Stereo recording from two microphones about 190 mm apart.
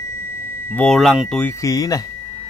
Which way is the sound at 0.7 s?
5° left (ahead or behind).